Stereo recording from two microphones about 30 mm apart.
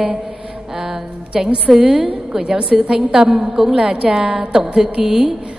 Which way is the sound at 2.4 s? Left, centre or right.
Right.